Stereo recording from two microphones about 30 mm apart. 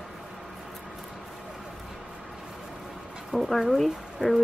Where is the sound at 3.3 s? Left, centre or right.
Centre.